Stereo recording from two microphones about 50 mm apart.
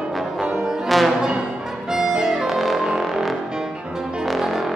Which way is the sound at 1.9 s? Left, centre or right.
Centre.